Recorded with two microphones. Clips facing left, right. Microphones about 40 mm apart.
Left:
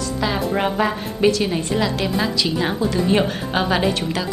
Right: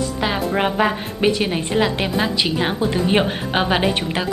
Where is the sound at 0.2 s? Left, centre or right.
Centre.